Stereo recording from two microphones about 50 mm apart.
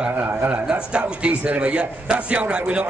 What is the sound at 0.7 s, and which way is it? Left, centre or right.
A man's voice, right.